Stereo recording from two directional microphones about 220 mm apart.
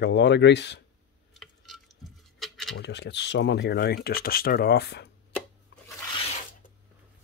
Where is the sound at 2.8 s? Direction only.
50° left (ahead or behind).